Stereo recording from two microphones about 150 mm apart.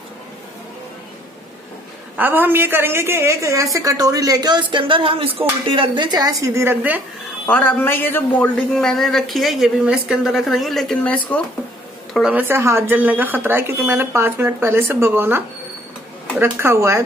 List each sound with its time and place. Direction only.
2.1 s a woman's voice: 15° right (ahead or behind)
7.4 s speech: 10° left (ahead or behind)
8.7 s a woman's voice: centre (ahead or behind)
12.1 s speech: 5° right (ahead or behind)